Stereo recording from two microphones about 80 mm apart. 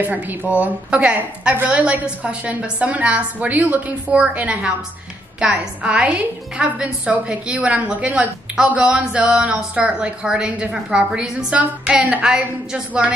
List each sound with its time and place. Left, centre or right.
0.0 s a woman's voice: right